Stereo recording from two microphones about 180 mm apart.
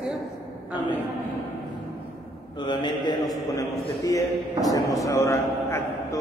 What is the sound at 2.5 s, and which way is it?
A man's voice, 25° left (ahead or behind).